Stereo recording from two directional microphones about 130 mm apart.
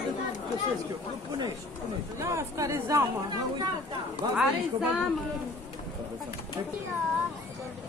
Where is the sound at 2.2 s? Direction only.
25° right (ahead or behind).